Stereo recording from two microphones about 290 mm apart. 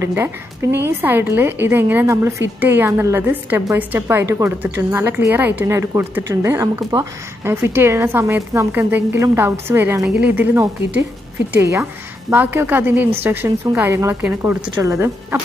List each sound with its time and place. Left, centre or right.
0.0 s a woman's voice: centre